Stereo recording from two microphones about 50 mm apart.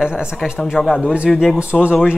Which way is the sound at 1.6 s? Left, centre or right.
Right.